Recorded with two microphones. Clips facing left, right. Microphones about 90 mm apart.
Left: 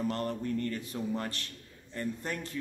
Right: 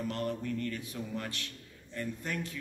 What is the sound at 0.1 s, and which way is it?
A man's voice, 40° left (ahead or behind).